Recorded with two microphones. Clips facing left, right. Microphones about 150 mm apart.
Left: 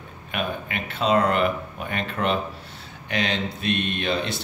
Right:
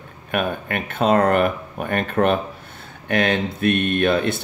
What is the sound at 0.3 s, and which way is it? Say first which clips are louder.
Speech: right 5 dB; 50° right (ahead or behind).